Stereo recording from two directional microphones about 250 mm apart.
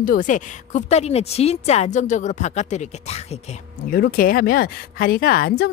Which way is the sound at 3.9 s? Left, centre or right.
Left.